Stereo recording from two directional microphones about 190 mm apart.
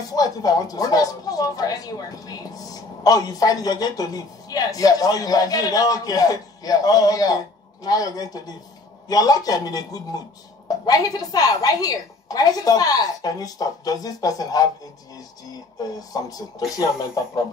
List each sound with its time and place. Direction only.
0.1 s a woman's voice: 20° left (ahead or behind)